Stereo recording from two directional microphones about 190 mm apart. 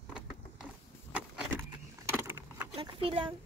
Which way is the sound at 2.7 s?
25° right (ahead or behind).